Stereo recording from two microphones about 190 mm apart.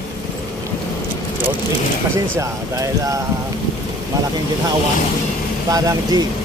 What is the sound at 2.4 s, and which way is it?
Speech, 15° right (ahead or behind).